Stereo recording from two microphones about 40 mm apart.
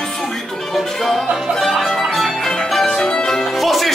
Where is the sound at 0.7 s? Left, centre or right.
Centre.